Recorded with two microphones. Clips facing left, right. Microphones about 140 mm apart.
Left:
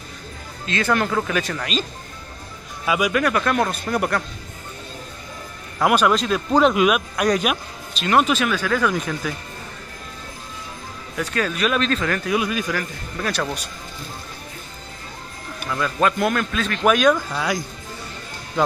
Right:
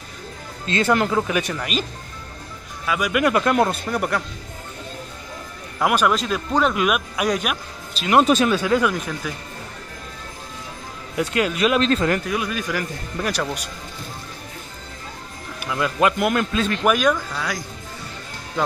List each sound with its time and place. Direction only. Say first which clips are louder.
0.7 s speech: right 2 dB; 25° right (ahead or behind); by 1.9 s 10° right (ahead or behind)
2.9 s speech: left 3 dB; 10° left (ahead or behind)
3.3 s speech: right 2 dB; 20° right (ahead or behind)
3.8 s speech: left 1 dB; 5° left (ahead or behind)
5.8 s speech: left 2 dB; centre (ahead or behind)
8.3 s speech: right 4 dB; 35° right (ahead or behind)
8.5 s speech: right 2 dB; 20° right (ahead or behind)
8.9 s speech: left 2 dB; centre (ahead or behind)
11.1 s speech: right 3 dB; 20° right (ahead or behind)
12.3 s speech: left 3 dB; 5° left (ahead or behind)
12.7 s speech: right 1 dB; 10° right (ahead or behind)
15.6 s speech: right 1 dB; 10° right (ahead or behind)
16.8 s speech: left 3 dB; 5° right (ahead or behind)
17.1 s speech: left 3 dB; 15° left (ahead or behind)